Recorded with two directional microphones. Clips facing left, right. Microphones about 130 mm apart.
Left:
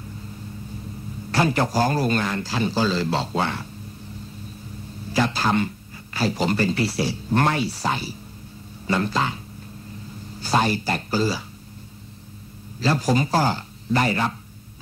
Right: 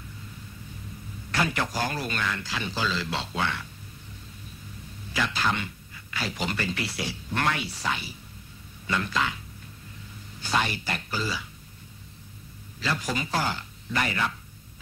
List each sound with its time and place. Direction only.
1.3 s speech: 35° left (ahead or behind)
5.1 s speech: 35° left (ahead or behind)
10.4 s speech: 35° left (ahead or behind)
12.8 s speech: 35° left (ahead or behind)